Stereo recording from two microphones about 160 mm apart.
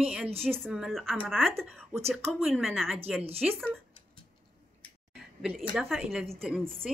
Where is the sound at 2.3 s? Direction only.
Centre (ahead or behind).